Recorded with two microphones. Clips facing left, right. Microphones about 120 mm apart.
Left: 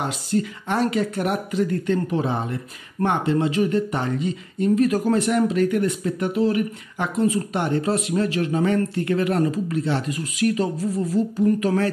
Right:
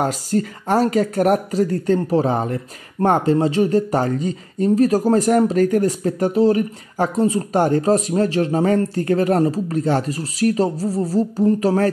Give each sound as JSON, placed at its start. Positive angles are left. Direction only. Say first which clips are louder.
{"t": 0.0, "sound": "speech", "louder": "right 4 dB", "side_deg": -40}